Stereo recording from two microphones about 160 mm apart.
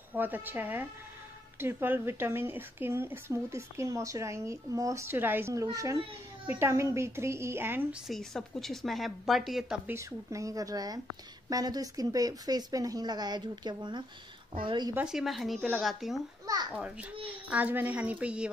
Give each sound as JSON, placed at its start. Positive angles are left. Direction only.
{"t": 0.1, "sound": "speech", "side_deg": -10}
{"t": 8.1, "sound": "a woman's voice", "side_deg": 0}
{"t": 9.8, "sound": "speech", "side_deg": -20}
{"t": 15.0, "sound": "a woman's voice", "side_deg": -5}